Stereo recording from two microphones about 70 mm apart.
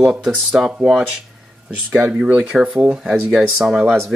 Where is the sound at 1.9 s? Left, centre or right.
Centre.